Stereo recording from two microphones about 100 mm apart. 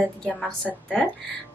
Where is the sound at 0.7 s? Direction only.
15° right (ahead or behind).